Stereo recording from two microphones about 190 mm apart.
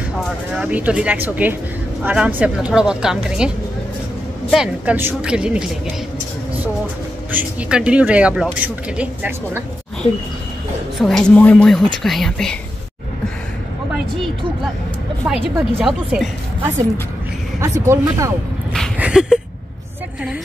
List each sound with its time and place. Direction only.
0.2 s a woman's voice: 5° right (ahead or behind)
7.3 s speech: 5° right (ahead or behind)
11.0 s a woman's voice: centre (ahead or behind)
15.2 s a woman's voice: 10° right (ahead or behind)
17.6 s speech: 15° right (ahead or behind)
18.9 s a sound: 5° right (ahead or behind)